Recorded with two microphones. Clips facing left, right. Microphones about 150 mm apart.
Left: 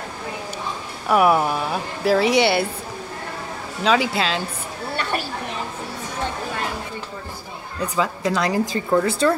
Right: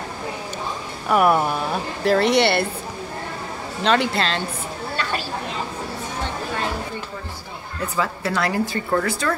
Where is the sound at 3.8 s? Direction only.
5° left (ahead or behind).